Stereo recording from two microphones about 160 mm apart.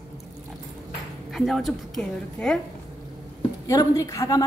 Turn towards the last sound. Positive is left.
turn(degrees=20)  # may be behind; listen again after turning